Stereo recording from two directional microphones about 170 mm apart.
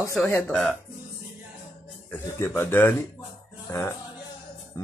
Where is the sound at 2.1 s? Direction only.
15° left (ahead or behind).